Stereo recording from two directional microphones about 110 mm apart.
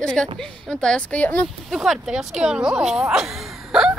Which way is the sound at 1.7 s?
Centre (ahead or behind).